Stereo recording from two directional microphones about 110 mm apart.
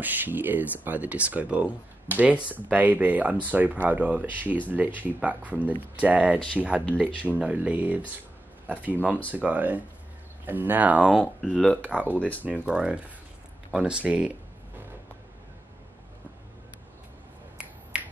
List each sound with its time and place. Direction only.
0.0 s speech: 15° right (ahead or behind)
11.4 s speech: 10° left (ahead or behind)
11.9 s speech: 10° right (ahead or behind)